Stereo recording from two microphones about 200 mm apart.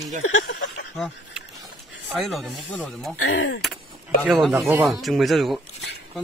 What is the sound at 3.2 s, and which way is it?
Speech, 70° left (ahead or behind).